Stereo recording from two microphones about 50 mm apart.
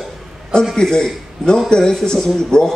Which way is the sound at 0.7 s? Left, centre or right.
Centre.